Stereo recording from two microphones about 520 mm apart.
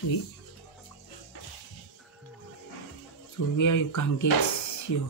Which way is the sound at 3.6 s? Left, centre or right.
Left.